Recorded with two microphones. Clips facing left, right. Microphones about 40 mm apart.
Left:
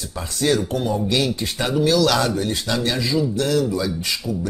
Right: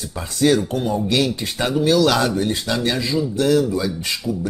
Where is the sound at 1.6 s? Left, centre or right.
Right.